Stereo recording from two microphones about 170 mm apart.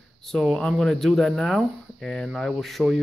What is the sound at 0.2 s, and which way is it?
Speech, centre (ahead or behind).